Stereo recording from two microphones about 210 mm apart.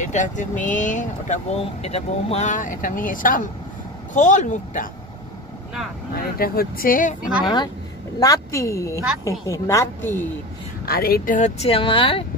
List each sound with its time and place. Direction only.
0.0 s speech: 35° left (ahead or behind)
6.3 s speech: 45° left (ahead or behind)
7.4 s a woman's voice: 20° left (ahead or behind)
10.9 s speech: 45° left (ahead or behind); by 12.3 s 25° left (ahead or behind)